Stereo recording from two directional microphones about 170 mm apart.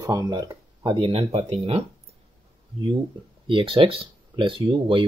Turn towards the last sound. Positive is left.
turn(degrees=-30)  # may be behind; listen again after turning